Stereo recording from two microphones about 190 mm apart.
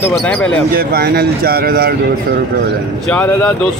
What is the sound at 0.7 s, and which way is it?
Speech, 55° right (ahead or behind).